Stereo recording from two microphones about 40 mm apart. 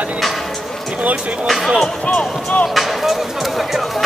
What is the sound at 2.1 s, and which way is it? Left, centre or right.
Speech, left.